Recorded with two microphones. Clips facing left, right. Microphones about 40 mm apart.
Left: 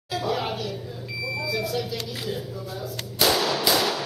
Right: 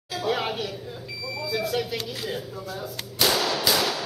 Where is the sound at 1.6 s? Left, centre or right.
Right.